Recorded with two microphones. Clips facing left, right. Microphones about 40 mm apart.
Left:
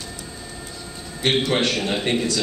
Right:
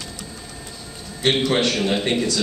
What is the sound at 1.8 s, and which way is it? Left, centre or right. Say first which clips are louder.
Speech: right 3 dB; centre.